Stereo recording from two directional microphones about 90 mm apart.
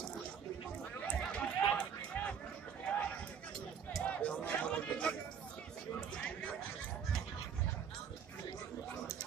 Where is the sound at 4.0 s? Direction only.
15° left (ahead or behind).